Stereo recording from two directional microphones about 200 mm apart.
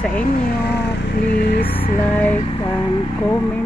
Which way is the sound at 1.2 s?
55° left (ahead or behind).